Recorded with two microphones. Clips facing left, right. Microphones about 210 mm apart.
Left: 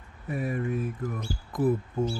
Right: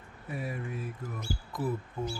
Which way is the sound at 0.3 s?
50° left (ahead or behind).